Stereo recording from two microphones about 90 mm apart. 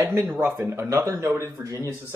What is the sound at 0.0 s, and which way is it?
Speech, 25° right (ahead or behind).